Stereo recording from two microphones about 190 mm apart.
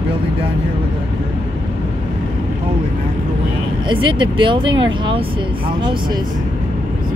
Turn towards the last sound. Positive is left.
turn(degrees=-25)  # may be behind; listen again after turning